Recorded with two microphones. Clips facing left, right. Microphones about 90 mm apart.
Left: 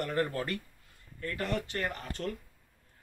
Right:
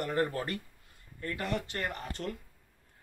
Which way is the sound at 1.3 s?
15° right (ahead or behind).